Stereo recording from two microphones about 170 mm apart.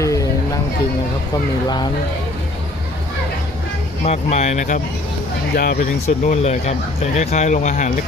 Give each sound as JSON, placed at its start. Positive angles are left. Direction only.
{"t": 0.0, "sound": "music", "side_deg": 20}
{"t": 4.0, "sound": "speech", "side_deg": 40}
{"t": 5.5, "sound": "speech", "side_deg": 60}
{"t": 6.0, "sound": "speech", "side_deg": 40}